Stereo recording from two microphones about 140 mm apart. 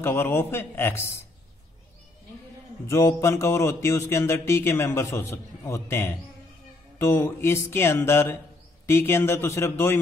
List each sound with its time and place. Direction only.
0.0 s music: 15° left (ahead or behind)
2.9 s speech: 20° left (ahead or behind)
7.0 s music: 15° left (ahead or behind)